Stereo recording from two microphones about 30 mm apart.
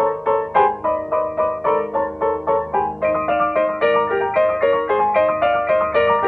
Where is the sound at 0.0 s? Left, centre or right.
Centre.